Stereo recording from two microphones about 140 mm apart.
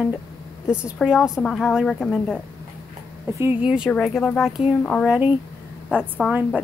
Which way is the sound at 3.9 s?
5° left (ahead or behind).